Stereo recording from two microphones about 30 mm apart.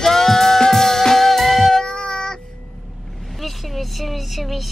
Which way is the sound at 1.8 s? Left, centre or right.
Left.